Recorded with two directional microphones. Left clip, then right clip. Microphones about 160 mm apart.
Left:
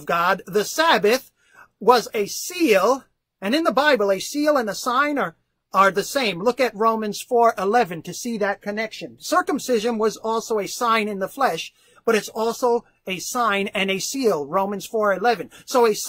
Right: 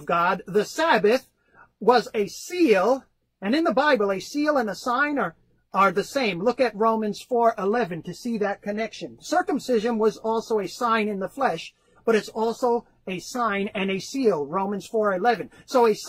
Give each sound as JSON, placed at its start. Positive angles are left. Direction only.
{"t": 0.0, "sound": "a woman's voice", "side_deg": 15}